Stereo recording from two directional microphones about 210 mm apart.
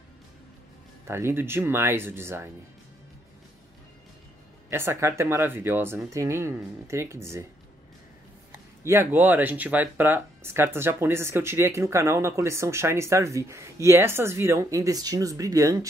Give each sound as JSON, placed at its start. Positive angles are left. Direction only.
{"t": 1.0, "sound": "speech", "side_deg": -10}
{"t": 4.6, "sound": "speech", "side_deg": -10}
{"t": 8.8, "sound": "speech", "side_deg": -10}